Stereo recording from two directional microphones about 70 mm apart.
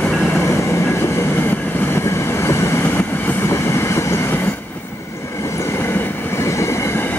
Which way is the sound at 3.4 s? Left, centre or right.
Left.